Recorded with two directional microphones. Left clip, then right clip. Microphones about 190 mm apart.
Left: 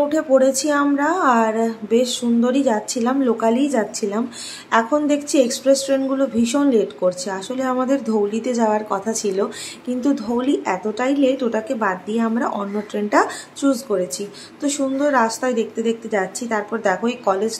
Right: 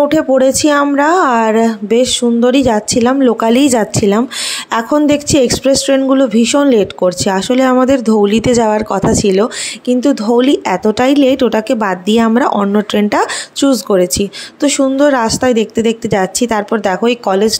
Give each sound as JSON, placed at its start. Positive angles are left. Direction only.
{"t": 0.1, "sound": "a woman's voice", "side_deg": -45}